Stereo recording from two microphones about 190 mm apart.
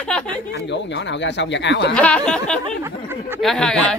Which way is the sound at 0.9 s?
70° left (ahead or behind).